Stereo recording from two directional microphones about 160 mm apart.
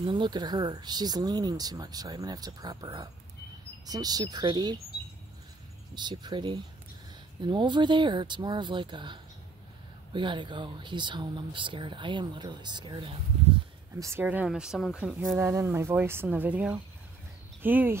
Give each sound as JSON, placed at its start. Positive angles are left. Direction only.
{"t": 0.0, "sound": "speech", "side_deg": -30}
{"t": 5.9, "sound": "speech", "side_deg": -30}
{"t": 13.9, "sound": "speech", "side_deg": -15}